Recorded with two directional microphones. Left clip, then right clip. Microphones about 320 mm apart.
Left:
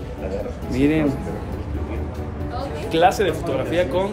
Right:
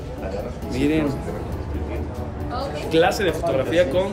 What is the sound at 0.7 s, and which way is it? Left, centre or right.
Speech, centre.